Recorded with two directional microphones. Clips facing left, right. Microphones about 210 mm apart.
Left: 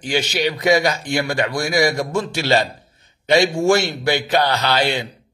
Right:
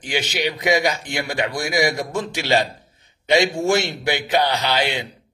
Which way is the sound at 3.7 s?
20° right (ahead or behind).